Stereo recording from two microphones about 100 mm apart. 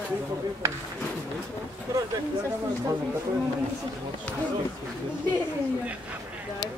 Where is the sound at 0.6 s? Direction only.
30° right (ahead or behind).